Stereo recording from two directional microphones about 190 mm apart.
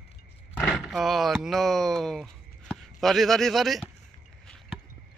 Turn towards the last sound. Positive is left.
turn(degrees=0)  # may be behind; listen again after turning